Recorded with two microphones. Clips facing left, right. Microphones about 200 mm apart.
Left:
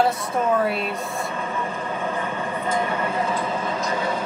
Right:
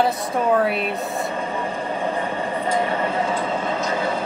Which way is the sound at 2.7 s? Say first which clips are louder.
Right 2 dB; 30° right (ahead or behind).